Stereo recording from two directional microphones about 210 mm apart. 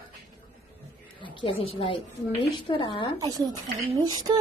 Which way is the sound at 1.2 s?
25° left (ahead or behind).